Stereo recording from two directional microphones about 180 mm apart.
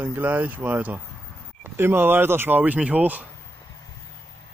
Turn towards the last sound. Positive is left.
turn(degrees=-10)  # may be behind; listen again after turning